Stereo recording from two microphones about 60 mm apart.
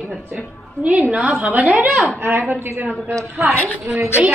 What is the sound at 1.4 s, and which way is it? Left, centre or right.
Speech, right.